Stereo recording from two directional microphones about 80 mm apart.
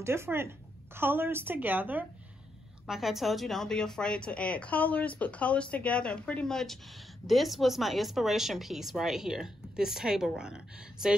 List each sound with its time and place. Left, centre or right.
0.0 s a woman's voice: right
2.9 s speech: centre